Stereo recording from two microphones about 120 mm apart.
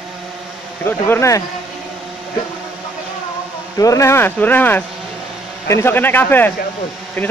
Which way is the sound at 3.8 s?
25° left (ahead or behind).